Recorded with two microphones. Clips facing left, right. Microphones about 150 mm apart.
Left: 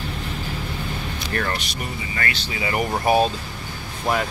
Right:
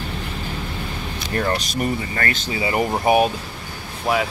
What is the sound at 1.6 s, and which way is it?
Speech, 40° right (ahead or behind).